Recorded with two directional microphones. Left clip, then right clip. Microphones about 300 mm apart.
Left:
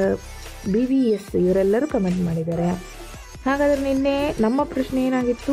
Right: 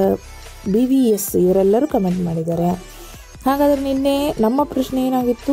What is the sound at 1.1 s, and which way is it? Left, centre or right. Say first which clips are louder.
Speech: right 4 dB; centre.